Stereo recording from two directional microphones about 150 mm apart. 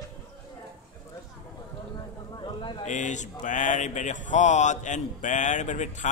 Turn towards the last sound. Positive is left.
turn(degrees=55)  # may be behind; listen again after turning